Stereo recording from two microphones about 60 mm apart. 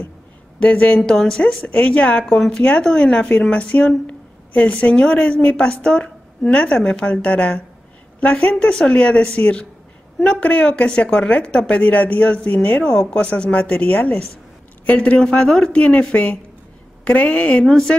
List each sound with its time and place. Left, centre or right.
0.6 s a woman's voice: left
1.0 s a woman's voice: centre
1.6 s a woman's voice: left
2.2 s a woman's voice: centre
13.2 s a woman's voice: left
15.2 s a woman's voice: centre
17.6 s a woman's voice: centre